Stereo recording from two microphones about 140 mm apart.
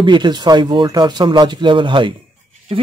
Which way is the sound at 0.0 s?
35° right (ahead or behind).